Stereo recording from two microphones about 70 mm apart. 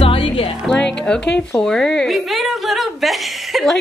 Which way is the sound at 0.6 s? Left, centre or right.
Centre.